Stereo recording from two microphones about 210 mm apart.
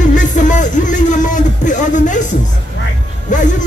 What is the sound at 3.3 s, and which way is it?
Speech, 35° left (ahead or behind).